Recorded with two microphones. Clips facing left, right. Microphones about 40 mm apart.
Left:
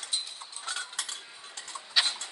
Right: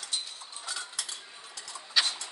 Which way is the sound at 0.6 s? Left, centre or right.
Left.